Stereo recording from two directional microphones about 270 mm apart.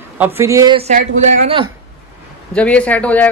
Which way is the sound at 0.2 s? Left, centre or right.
Centre.